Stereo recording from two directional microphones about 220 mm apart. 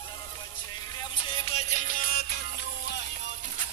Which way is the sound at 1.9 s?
40° left (ahead or behind).